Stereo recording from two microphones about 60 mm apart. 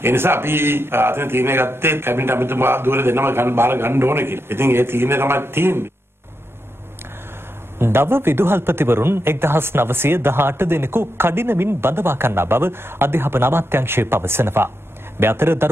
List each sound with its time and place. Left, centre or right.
0.0 s a man's voice: right
7.8 s a man's voice: right